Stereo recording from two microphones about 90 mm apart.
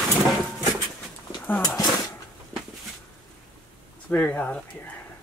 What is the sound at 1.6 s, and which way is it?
Dog, 45° left (ahead or behind).